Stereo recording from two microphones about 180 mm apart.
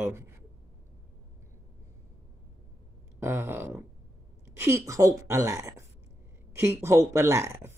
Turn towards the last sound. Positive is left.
turn(degrees=-15)  # may be behind; listen again after turning